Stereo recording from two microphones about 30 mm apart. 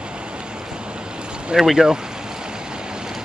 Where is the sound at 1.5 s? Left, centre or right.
Right.